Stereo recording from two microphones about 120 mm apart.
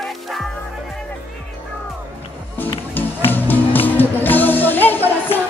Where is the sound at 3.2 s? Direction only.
15° left (ahead or behind).